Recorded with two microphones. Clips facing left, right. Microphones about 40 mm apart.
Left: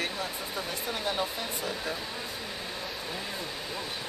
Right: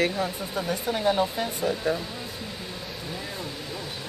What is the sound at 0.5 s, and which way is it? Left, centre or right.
Speech, centre.